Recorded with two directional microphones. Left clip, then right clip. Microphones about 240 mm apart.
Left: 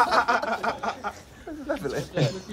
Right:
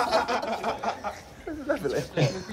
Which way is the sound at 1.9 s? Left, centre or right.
Left.